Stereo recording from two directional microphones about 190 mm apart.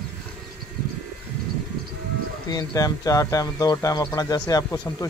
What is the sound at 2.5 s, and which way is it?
Speech, 20° left (ahead or behind).